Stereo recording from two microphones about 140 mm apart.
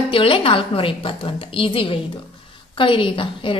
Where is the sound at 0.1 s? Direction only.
40° left (ahead or behind).